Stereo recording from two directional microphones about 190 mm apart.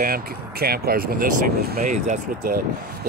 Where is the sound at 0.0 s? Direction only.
50° right (ahead or behind).